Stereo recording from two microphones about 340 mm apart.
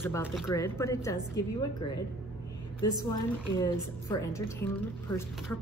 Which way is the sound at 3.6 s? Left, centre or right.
Centre.